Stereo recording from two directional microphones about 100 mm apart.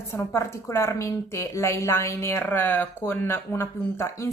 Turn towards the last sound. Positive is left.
turn(degrees=25)  # may be behind; listen again after turning